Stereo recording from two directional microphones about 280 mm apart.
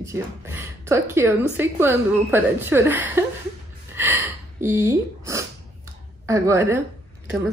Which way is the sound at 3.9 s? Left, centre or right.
Centre.